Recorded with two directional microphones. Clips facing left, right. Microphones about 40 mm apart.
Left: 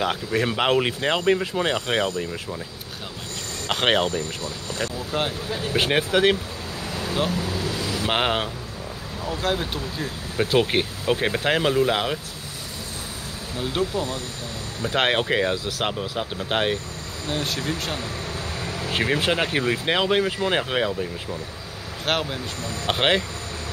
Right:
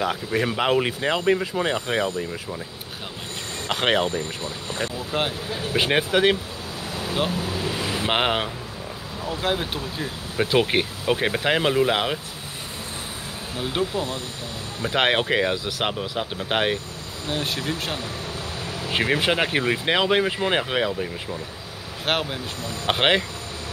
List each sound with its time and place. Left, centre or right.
0.5 s speech: centre
1.7 s speech: left
4.1 s speech: right; by 6.3 s centre
7.1 s vehicle: centre
8.1 s speech: centre
13.6 s speech: right
18.9 s speech: centre